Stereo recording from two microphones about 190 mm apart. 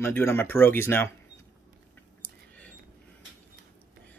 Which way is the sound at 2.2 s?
10° left (ahead or behind).